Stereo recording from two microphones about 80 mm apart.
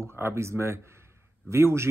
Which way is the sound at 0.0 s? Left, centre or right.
Right.